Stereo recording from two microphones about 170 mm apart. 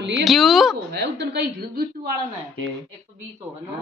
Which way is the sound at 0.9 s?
80° right.